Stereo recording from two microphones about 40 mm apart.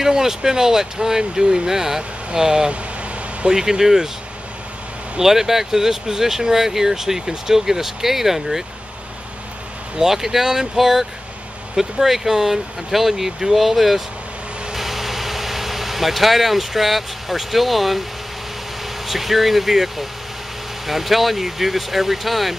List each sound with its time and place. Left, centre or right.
0.0 s speech: centre
5.2 s speech: centre
9.9 s speech: centre
14.7 s vehicle: centre
19.0 s speech: centre